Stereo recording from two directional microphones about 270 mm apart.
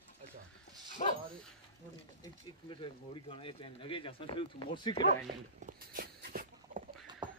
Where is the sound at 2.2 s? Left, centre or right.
Centre.